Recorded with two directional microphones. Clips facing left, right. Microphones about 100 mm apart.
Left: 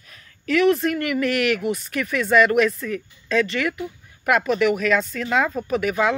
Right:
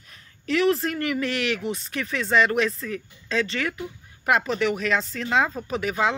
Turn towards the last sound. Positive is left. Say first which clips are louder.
# left 3 dB
turn(degrees=-30)  # may be behind; listen again after turning